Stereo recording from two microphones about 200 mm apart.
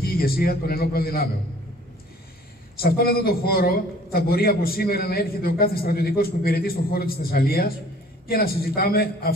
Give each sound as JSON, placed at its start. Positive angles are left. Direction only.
{"t": 0.0, "sound": "a man's voice", "side_deg": 50}
{"t": 2.8, "sound": "a man's voice", "side_deg": 50}